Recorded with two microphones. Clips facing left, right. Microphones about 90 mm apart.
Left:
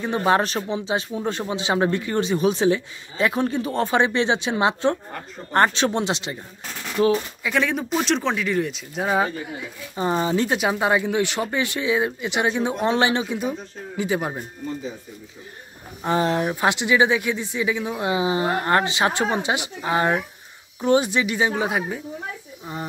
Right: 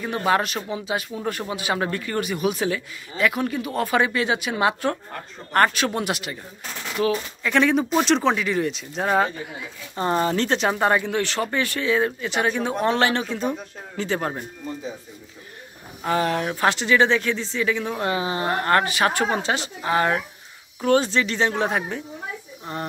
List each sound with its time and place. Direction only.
0.0 s speech: 25° left (ahead or behind)
7.4 s speech: centre (ahead or behind)
16.0 s speech: 25° left (ahead or behind); by 22.8 s 5° left (ahead or behind)